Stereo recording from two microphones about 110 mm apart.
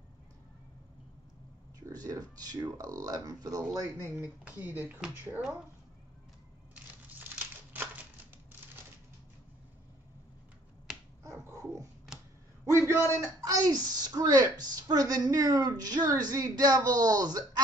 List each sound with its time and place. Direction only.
1.8 s a woman's voice: 35° right (ahead or behind)
4.5 s speech: 15° right (ahead or behind)
11.3 s dog: 25° right (ahead or behind)
12.7 s a sound: 25° right (ahead or behind)
13.2 s a woman's voice: 30° right (ahead or behind)